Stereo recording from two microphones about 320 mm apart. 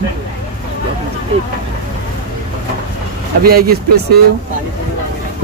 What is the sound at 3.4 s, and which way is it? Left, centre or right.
Speech, right.